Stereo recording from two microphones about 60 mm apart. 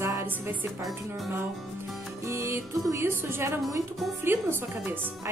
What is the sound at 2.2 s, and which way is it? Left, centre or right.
A woman's voice, right.